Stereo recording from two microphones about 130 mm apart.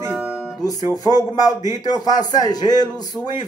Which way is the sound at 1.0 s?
30° left (ahead or behind).